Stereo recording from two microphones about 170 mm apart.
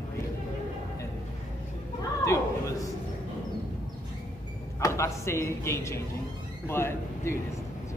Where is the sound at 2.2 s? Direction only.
20° left (ahead or behind).